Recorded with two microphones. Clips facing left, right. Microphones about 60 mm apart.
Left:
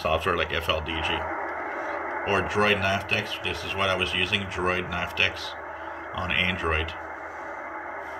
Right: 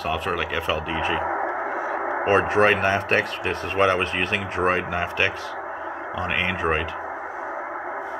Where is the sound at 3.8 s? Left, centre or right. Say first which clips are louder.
Right 5 dB; right.